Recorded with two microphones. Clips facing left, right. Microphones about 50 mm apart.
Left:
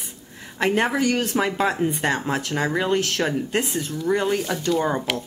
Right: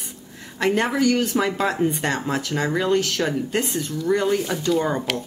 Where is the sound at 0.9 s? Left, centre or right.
Left.